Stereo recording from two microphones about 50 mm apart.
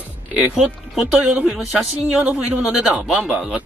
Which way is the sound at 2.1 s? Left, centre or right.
Right.